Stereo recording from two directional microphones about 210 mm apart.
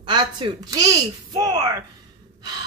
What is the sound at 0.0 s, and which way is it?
Speech, 20° right (ahead or behind).